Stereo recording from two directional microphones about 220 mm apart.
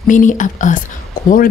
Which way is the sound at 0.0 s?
35° left (ahead or behind).